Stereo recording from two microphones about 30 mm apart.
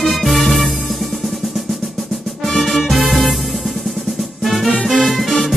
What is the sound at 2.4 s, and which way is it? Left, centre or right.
Music, centre.